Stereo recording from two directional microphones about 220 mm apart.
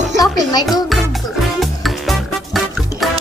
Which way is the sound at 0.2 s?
15° left (ahead or behind).